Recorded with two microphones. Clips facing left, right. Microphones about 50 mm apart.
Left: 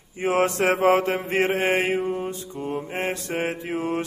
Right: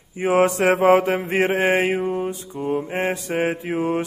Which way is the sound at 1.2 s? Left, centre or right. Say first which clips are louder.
Right 2 dB; right.